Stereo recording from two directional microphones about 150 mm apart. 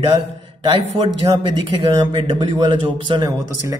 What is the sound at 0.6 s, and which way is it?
Speech, 30° right (ahead or behind).